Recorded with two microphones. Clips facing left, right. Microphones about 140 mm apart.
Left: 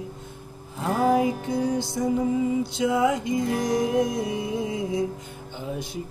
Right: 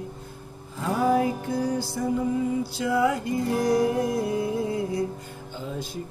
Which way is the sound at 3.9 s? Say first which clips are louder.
Left 2 dB; 90° left.